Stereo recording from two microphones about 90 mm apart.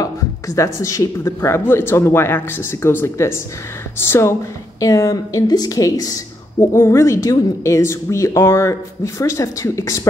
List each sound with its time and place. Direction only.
0.0 s a woman's voice: 40° left (ahead or behind)
6.6 s a woman's voice: 30° left (ahead or behind)